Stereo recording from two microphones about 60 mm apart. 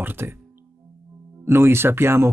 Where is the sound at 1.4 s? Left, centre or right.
Right.